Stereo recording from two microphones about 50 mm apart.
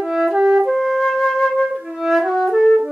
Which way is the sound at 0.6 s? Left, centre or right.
Centre.